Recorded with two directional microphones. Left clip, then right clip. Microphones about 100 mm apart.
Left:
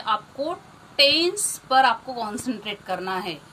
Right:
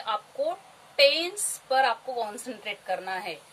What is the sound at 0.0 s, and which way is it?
A woman's voice, 35° right (ahead or behind).